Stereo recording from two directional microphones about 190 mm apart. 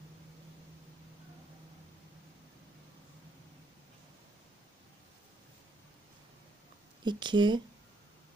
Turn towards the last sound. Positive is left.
turn(degrees=-25)  # may be behind; listen again after turning